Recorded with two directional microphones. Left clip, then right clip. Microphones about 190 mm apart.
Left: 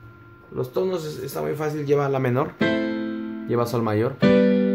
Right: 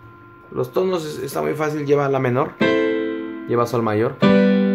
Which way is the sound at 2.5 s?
35° right (ahead or behind).